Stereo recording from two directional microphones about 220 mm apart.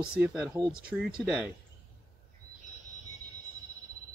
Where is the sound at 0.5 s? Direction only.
20° right (ahead or behind).